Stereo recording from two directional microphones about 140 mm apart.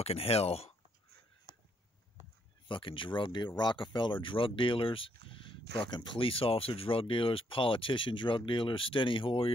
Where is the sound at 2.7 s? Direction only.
40° left (ahead or behind).